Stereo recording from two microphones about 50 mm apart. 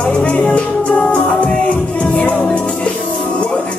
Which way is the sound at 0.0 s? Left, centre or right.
Left.